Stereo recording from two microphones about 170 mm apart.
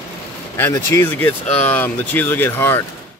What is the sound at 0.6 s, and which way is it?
Speech, 15° left (ahead or behind).